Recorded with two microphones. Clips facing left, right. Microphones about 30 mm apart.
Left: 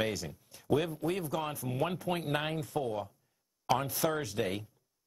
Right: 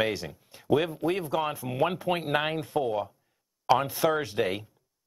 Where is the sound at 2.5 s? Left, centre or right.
Right.